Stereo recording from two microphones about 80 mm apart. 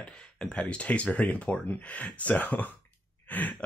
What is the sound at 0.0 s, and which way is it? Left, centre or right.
Speech, centre.